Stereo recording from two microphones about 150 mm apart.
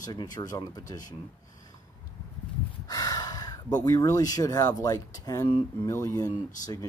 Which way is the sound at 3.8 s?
25° left (ahead or behind).